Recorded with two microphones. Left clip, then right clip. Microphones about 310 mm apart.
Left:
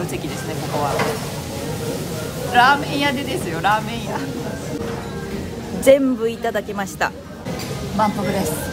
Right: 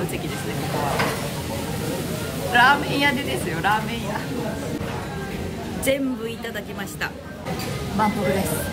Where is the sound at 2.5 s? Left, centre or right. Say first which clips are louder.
Left 2 dB; centre.